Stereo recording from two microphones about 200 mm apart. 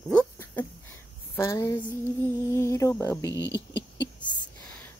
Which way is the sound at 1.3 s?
15° left (ahead or behind).